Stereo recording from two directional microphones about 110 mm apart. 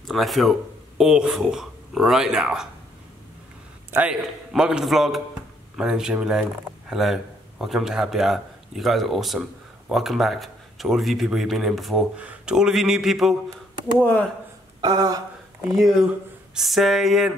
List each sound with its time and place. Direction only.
0.0 s speech: centre (ahead or behind)
4.1 s a man's voice: 5° right (ahead or behind)
14.8 s speech: 35° right (ahead or behind)
15.7 s a man's voice: centre (ahead or behind)